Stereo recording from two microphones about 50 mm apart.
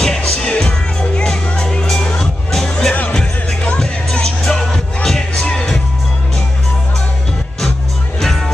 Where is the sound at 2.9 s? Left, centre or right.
Left.